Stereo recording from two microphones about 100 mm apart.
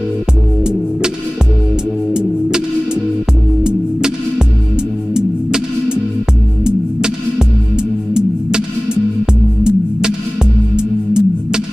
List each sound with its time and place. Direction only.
5.1 s music: 5° right (ahead or behind)